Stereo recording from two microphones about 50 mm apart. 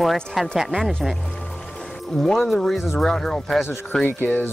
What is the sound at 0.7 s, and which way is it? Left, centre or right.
Speech, centre.